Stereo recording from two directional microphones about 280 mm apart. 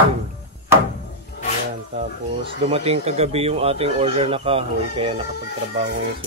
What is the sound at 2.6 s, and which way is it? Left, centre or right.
Speech, right.